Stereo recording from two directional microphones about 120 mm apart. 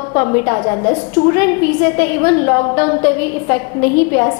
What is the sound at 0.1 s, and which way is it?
A woman's voice, 25° left (ahead or behind).